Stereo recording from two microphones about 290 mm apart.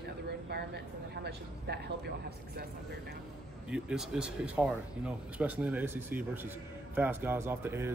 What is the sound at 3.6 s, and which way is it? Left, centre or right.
Speech, centre.